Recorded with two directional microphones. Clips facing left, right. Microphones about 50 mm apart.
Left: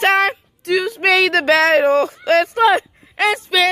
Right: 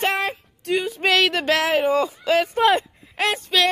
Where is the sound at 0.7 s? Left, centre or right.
Left.